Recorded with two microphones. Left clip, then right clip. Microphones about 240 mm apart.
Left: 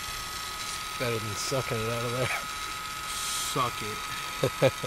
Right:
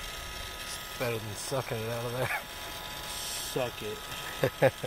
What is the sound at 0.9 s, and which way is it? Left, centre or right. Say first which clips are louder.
Speech: left 2 dB; left.